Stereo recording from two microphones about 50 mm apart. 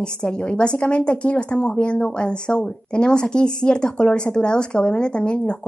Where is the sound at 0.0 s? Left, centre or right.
Centre.